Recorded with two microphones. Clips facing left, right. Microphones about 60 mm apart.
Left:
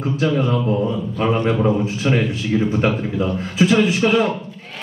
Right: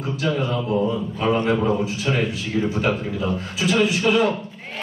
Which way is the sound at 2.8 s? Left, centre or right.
Left.